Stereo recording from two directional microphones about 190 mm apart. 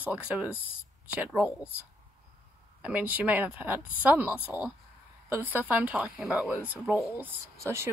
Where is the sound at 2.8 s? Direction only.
10° right (ahead or behind).